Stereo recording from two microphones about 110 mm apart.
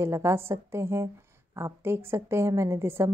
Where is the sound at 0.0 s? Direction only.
25° right (ahead or behind).